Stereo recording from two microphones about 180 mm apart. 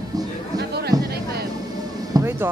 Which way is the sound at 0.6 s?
65° right (ahead or behind).